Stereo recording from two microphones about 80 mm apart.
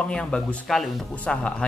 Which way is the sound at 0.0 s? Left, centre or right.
Centre.